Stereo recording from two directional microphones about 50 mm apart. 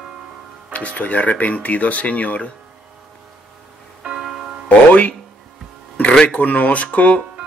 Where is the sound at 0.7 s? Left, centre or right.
Left.